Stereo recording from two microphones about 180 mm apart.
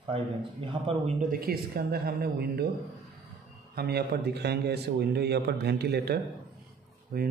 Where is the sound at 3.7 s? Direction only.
60° right (ahead or behind).